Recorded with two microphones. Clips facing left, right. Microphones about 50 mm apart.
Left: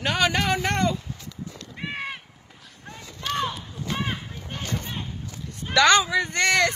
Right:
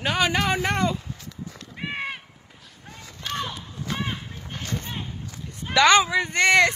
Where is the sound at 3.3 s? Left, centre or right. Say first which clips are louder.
Left 3 dB; centre.